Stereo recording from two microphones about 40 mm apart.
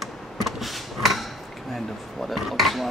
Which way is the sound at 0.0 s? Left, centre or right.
Centre.